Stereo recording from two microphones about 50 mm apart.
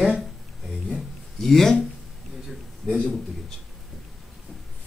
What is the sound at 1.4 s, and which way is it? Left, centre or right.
Speech, centre.